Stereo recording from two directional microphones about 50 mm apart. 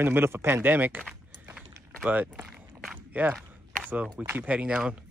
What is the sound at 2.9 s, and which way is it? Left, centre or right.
Biting, right.